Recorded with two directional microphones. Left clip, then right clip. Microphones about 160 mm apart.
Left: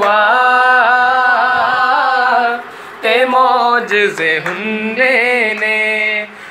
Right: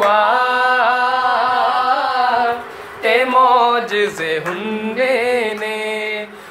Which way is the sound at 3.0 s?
Centre (ahead or behind).